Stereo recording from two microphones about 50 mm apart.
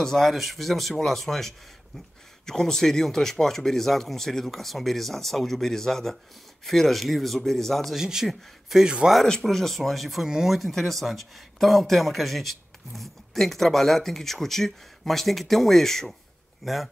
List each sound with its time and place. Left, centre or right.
0.0 s speech: centre
7.9 s a man's voice: centre
9.4 s a man's voice: centre
10.6 s speech: centre